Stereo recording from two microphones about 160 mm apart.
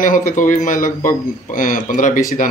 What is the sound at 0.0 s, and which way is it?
A man's voice, 55° left (ahead or behind).